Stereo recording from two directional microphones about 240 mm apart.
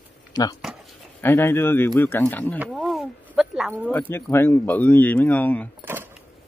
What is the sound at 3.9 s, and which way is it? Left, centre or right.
Speech, centre.